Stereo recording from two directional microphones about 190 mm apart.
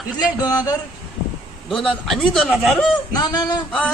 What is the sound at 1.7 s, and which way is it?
Speech, centre (ahead or behind).